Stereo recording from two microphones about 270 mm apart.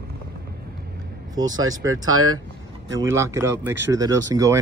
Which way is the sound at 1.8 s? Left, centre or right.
Right.